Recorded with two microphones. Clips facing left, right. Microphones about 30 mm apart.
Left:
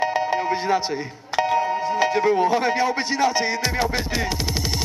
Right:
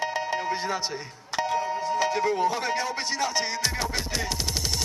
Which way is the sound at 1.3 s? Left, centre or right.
Centre.